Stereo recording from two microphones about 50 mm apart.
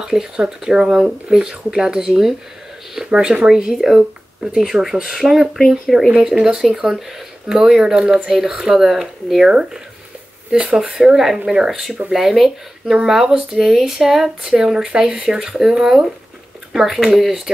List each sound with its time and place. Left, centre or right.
0.0 s speech: centre
3.1 s speech: centre